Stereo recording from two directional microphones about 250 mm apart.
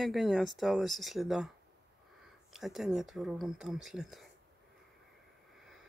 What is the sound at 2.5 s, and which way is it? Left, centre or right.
Speech, centre.